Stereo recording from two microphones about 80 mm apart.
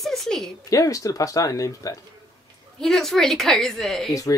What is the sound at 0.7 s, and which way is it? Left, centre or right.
Speech, left.